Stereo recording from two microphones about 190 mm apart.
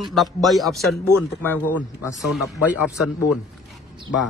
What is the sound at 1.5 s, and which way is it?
A man's voice, 10° right (ahead or behind).